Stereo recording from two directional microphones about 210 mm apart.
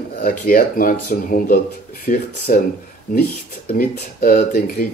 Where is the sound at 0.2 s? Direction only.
45° left (ahead or behind).